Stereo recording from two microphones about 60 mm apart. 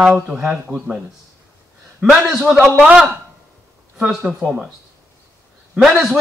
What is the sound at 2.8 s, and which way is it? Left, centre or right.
Speech, centre.